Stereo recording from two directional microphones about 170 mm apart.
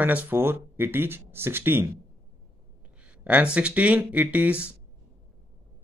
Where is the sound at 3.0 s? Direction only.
10° right (ahead or behind).